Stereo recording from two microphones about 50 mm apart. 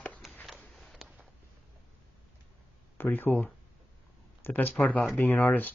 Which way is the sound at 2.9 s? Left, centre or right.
Left.